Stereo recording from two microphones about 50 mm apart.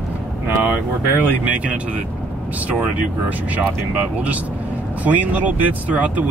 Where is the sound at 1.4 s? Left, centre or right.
Right.